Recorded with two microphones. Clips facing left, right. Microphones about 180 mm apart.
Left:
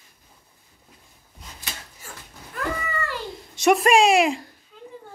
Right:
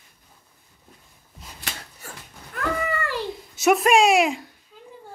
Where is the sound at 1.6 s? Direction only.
80° right.